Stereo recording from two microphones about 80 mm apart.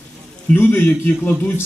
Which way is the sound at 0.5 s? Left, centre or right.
Left.